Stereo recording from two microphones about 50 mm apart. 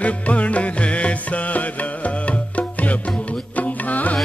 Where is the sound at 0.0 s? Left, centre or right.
Left.